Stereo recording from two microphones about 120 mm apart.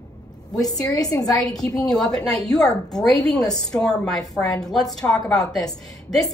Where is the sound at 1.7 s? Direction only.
5° left (ahead or behind).